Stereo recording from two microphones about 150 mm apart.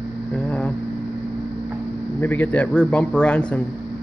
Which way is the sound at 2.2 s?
10° left (ahead or behind).